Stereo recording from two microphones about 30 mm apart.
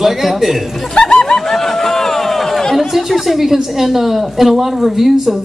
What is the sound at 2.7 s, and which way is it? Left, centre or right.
A woman's voice, centre.